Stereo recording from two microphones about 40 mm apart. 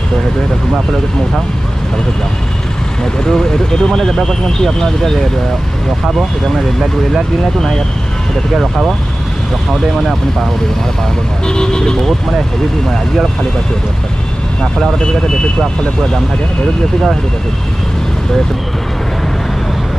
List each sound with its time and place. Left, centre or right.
3.3 s speech: centre
11.4 s speech: centre